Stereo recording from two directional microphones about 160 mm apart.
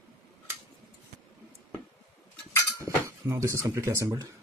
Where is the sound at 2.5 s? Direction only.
15° left (ahead or behind).